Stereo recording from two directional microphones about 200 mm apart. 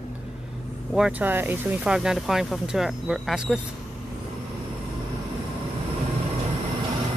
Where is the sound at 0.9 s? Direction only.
5° right (ahead or behind).